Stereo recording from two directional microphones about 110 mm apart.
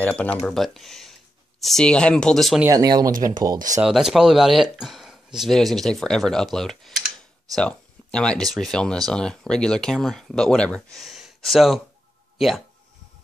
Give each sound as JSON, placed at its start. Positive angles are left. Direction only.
{"t": 0.0, "sound": "speech", "side_deg": 10}
{"t": 0.4, "sound": "speech", "side_deg": 0}
{"t": 2.7, "sound": "speech", "side_deg": -35}
{"t": 3.8, "sound": "speech", "side_deg": 0}